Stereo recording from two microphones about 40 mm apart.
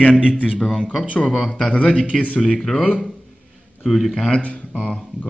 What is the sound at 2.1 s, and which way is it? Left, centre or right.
Speech, centre.